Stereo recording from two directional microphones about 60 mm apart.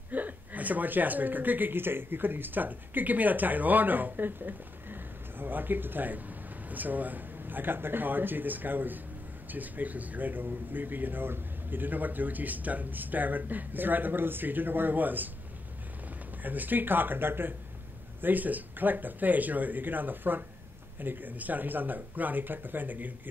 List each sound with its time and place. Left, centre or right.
0.1 s speech: right
16.4 s speech: right